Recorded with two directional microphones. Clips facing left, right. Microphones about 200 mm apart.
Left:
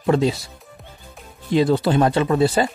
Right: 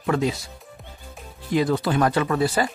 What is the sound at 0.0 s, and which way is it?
Speech, 30° left (ahead or behind).